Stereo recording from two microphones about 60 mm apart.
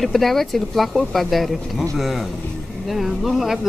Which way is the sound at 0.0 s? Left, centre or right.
Centre.